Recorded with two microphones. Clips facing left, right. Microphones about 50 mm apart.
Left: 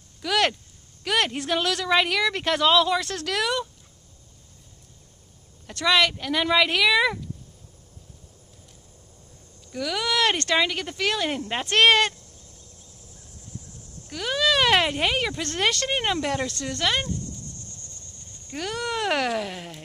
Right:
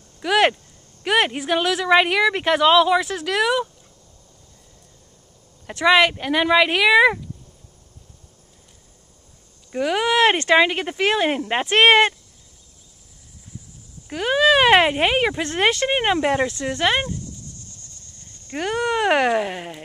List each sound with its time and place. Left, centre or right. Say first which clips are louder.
0.2 s a woman's voice: right 6 dB; right
5.7 s speech: right 5 dB; right
9.7 s speech: right 7 dB; right
14.1 s speech: right 6 dB; right
18.5 s speech: right 7 dB; right